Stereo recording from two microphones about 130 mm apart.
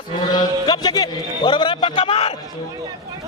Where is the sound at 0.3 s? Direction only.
35° left (ahead or behind).